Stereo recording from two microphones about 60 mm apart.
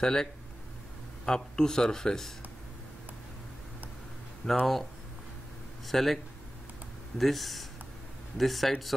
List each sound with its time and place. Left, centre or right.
0.0 s speech: centre
4.4 s speech: centre
5.9 s speech: centre
7.2 s speech: centre